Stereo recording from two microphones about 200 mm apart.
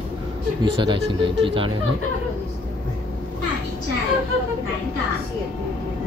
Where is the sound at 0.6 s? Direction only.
25° right (ahead or behind).